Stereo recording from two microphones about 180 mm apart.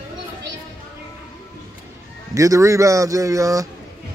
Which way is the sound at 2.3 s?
15° right (ahead or behind).